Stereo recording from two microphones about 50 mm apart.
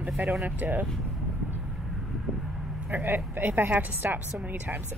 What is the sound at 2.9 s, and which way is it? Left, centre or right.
Speech, right.